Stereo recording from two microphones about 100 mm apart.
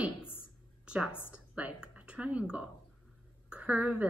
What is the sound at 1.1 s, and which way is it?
Speech, 20° left (ahead or behind).